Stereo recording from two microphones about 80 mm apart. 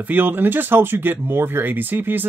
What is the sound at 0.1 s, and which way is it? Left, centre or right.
Speech, right.